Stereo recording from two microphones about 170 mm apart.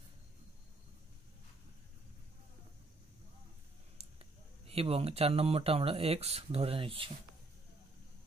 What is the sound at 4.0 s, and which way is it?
Speech, 35° right (ahead or behind).